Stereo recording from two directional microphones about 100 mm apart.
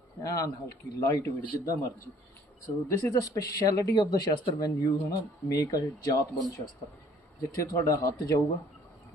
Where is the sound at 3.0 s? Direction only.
35° left (ahead or behind).